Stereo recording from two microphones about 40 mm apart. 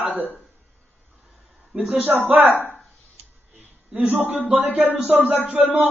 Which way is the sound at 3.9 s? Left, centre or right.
Right.